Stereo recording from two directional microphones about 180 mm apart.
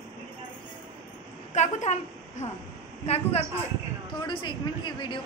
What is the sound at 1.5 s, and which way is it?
A woman's voice, 40° left (ahead or behind).